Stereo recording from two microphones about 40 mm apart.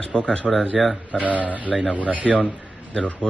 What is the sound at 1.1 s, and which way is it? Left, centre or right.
Speech, right.